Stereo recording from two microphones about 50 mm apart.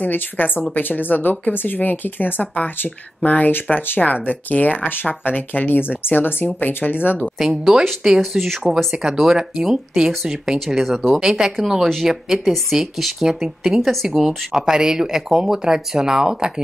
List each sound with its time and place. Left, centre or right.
0.0 s speech: left
7.3 s speech: centre
8.9 s speech: centre